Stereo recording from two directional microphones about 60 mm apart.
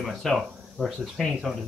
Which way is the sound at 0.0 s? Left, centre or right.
Centre.